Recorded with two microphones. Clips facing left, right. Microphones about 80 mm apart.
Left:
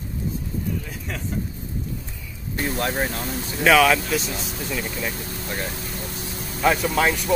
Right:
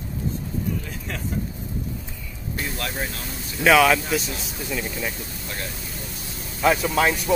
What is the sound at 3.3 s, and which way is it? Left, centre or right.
Speech, left.